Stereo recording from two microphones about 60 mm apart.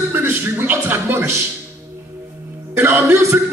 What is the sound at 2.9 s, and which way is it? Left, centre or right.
Speech, right.